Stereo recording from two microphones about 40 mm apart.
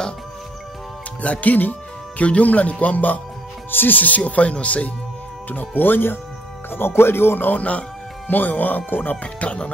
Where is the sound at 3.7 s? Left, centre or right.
Left.